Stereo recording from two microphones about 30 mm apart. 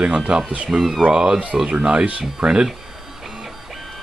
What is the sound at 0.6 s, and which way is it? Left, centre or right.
Speech, centre.